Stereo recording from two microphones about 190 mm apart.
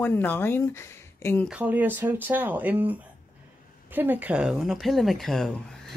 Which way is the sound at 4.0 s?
10° right (ahead or behind).